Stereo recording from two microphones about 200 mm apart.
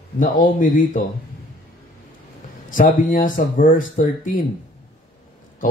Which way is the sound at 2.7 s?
45° left (ahead or behind).